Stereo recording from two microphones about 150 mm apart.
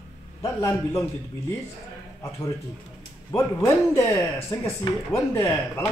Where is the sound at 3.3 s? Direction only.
20° left (ahead or behind).